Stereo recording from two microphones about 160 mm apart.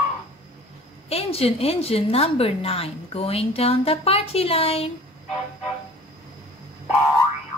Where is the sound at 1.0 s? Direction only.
40° left (ahead or behind).